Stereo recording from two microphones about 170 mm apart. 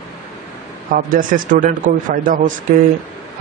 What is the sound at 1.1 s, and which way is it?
Speech, 55° right (ahead or behind).